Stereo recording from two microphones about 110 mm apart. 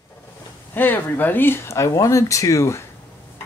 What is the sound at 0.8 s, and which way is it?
Speech, 15° left (ahead or behind).